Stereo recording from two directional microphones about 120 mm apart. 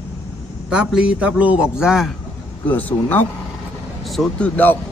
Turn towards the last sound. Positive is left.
turn(degrees=15)  # may be behind; listen again after turning